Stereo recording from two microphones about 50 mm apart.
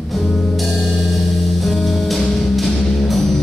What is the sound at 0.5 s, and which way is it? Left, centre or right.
Music, centre.